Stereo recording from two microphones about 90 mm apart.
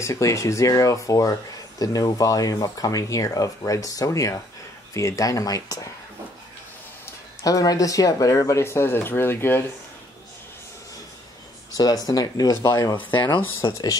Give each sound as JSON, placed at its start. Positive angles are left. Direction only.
{"t": 0.0, "sound": "speech", "side_deg": 35}
{"t": 7.1, "sound": "speech", "side_deg": 40}
{"t": 11.7, "sound": "speech", "side_deg": 45}
{"t": 13.0, "sound": "speech", "side_deg": 20}